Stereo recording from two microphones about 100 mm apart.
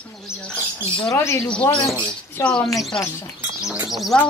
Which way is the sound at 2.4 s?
10° left (ahead or behind).